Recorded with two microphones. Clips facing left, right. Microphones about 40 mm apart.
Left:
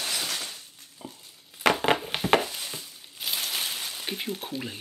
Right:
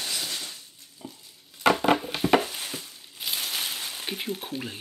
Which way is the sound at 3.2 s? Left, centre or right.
Centre.